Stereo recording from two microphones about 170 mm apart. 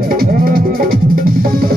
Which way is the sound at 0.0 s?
60° right (ahead or behind).